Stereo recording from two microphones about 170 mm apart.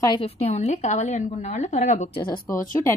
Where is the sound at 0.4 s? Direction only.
40° left (ahead or behind).